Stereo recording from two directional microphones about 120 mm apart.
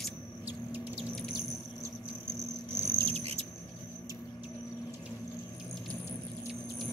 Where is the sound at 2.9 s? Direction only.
50° right (ahead or behind).